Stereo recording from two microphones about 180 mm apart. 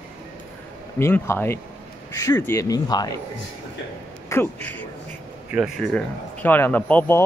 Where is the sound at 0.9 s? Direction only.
10° left (ahead or behind).